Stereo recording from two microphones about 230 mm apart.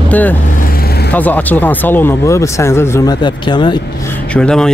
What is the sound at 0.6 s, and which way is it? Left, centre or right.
Vehicle, left.